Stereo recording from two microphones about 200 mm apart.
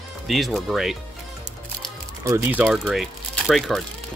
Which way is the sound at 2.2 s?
15° right (ahead or behind).